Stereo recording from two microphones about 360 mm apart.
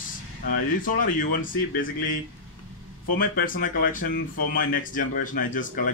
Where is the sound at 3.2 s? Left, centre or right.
Left.